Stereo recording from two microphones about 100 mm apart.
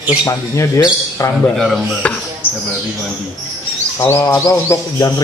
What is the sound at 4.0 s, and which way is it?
Speech, 30° left (ahead or behind).